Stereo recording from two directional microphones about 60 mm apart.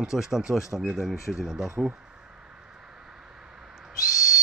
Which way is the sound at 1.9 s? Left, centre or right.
Centre.